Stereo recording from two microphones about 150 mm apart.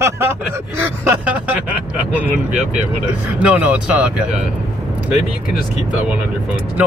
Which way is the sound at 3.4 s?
10° right (ahead or behind).